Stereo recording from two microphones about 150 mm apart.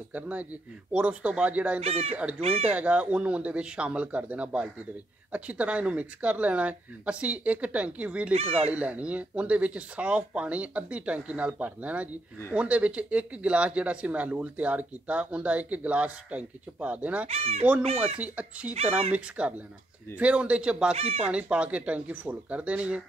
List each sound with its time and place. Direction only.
0.1 s speech: 10° right (ahead or behind)
1.8 s speech: 40° right (ahead or behind)
2.7 s speech: 10° right (ahead or behind)
8.3 s speech: 40° right (ahead or behind)
8.7 s speech: 10° right (ahead or behind)
17.3 s speech: 40° right (ahead or behind)
18.2 s speech: 10° right (ahead or behind)
20.9 s speech: 40° right (ahead or behind)
21.3 s speech: 10° right (ahead or behind)